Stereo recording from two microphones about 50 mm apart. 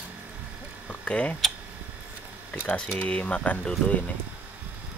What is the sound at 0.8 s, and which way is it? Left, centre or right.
Speech, left.